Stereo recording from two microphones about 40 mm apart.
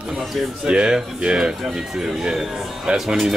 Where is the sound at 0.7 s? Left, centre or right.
Centre.